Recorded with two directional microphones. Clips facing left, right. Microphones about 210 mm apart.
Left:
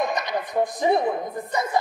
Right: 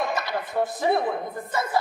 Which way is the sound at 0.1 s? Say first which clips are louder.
Left 2 dB; 15° left (ahead or behind).